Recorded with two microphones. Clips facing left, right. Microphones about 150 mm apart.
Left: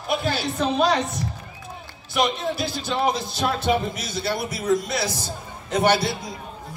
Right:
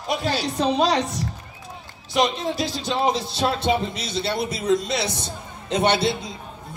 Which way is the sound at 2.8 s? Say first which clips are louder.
Right 1 dB; 30° right (ahead or behind).